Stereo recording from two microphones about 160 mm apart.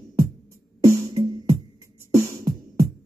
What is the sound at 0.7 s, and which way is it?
Music, 20° right (ahead or behind).